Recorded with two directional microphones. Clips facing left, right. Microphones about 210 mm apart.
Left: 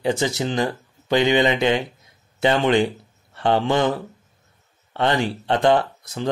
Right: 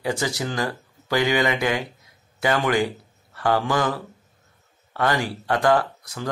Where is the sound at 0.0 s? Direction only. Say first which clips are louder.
Left 4 dB; 25° left (ahead or behind).